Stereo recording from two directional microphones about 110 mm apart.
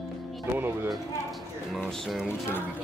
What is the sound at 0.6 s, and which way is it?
Speech, 20° right (ahead or behind).